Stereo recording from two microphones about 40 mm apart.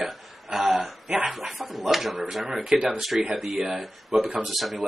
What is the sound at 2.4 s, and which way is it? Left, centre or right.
Speech, right.